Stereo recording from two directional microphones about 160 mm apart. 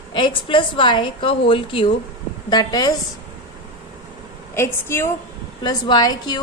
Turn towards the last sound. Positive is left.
turn(degrees=25)  # may be behind; listen again after turning